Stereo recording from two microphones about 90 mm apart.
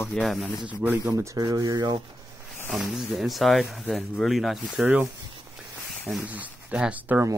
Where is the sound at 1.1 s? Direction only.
40° right (ahead or behind).